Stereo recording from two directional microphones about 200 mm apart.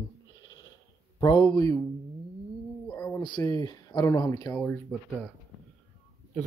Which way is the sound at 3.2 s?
20° left (ahead or behind).